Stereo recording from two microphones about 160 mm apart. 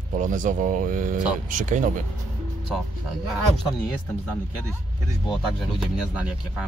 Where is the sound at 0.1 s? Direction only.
55° right (ahead or behind).